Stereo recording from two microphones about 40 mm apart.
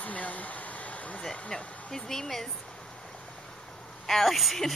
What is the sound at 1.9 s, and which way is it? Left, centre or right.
Speech, centre.